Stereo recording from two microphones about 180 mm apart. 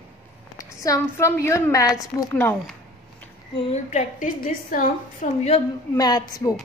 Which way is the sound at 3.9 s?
45° left (ahead or behind).